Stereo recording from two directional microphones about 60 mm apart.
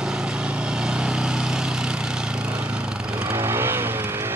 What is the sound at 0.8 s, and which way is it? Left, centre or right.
Vehicle, centre.